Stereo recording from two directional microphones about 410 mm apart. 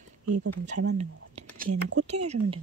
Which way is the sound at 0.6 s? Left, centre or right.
Centre.